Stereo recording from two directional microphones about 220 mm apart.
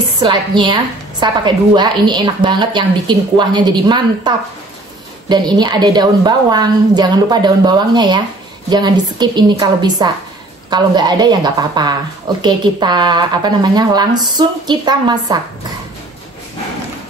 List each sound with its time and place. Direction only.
0.2 s a woman's voice: 20° right (ahead or behind)
5.3 s a woman's voice: 20° right (ahead or behind)